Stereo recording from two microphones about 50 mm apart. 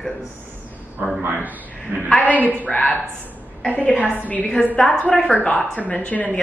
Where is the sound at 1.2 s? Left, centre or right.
Right.